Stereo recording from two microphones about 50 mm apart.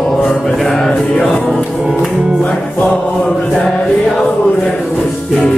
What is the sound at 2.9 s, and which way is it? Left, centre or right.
Music, centre.